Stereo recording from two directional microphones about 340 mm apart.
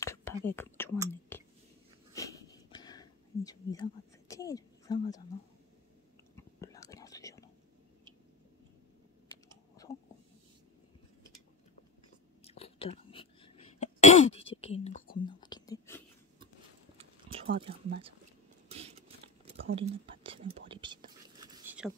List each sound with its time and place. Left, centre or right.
0.0 s whispering: centre
2.1 s a sound: centre
6.3 s whispering: centre
12.4 s cough: centre
14.6 s whispering: centre
17.0 s a sound: centre